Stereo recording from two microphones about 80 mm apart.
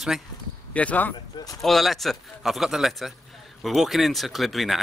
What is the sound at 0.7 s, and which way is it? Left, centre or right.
Speech, centre.